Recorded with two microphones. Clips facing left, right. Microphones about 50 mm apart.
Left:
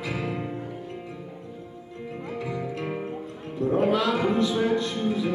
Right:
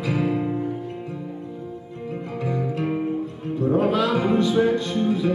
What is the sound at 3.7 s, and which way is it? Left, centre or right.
Music, right.